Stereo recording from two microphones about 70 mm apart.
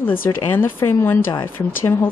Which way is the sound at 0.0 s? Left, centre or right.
Left.